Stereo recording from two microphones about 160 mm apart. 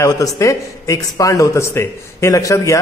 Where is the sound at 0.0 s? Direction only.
20° left (ahead or behind).